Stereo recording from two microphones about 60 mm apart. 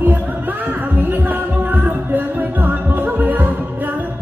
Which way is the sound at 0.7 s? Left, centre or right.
Right.